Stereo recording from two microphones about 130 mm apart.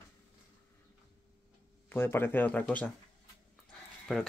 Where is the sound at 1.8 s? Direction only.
20° left (ahead or behind).